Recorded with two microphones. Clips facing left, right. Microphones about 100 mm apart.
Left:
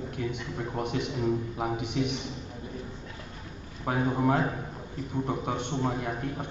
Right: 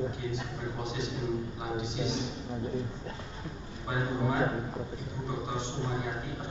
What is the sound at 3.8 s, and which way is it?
A man's voice, 60° left (ahead or behind).